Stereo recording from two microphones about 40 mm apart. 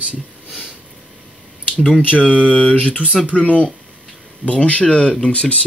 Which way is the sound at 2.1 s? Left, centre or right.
Left.